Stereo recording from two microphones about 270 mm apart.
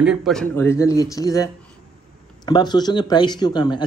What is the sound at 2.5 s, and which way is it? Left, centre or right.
Speech, centre.